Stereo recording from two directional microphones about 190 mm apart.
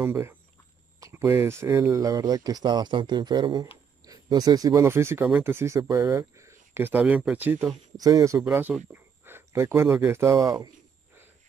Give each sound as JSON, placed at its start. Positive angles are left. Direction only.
{"t": 0.0, "sound": "speech", "side_deg": -10}
{"t": 8.5, "sound": "speech", "side_deg": -5}